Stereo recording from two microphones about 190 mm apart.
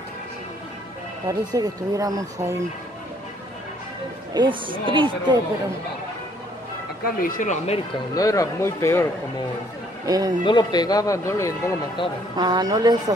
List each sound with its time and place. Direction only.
1.5 s speech: 20° right (ahead or behind)
4.3 s speech: 25° right (ahead or behind)
7.2 s speech: 45° left (ahead or behind)
8.1 s speech: 20° left (ahead or behind)
10.0 s speech: 20° right (ahead or behind)
10.4 s speech: 25° left (ahead or behind)
12.4 s speech: 20° right (ahead or behind)